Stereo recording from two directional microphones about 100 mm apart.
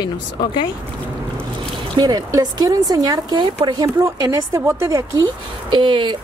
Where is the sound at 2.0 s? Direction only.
40° right (ahead or behind).